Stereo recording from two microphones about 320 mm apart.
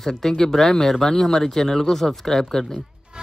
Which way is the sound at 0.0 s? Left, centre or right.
Centre.